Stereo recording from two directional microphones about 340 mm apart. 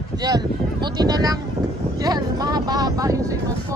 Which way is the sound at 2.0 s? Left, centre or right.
Centre.